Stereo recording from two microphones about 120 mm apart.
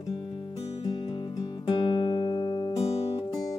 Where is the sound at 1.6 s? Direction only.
40° left (ahead or behind).